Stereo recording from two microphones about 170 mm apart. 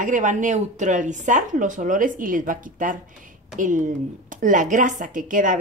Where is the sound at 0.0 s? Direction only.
50° right (ahead or behind).